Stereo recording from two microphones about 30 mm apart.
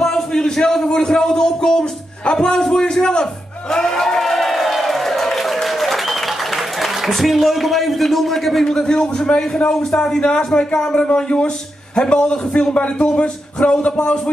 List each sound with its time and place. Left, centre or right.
0.0 s a sound: centre
0.8 s a man's voice: left
3.7 s music: centre
4.2 s music: centre
6.8 s a man's voice: centre
8.6 s a man's voice: left
10.2 s a man's voice: left
13.8 s music: left